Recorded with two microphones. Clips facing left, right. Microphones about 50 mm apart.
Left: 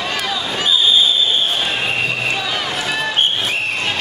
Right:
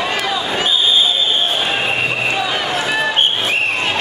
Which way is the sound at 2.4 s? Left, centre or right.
Centre.